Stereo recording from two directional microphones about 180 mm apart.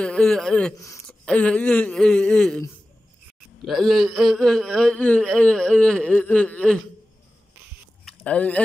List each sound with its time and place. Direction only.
0.0 s a man's voice: 5° left (ahead or behind)
0.7 s speech: 15° left (ahead or behind)
1.0 s a man's voice: 5° left (ahead or behind)
3.6 s a man's voice: centre (ahead or behind)
8.0 s chewing: 5° left (ahead or behind)